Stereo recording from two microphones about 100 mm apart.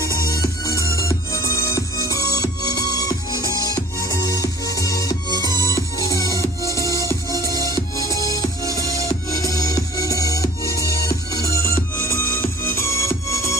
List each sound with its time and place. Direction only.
0.8 s music: 30° left (ahead or behind)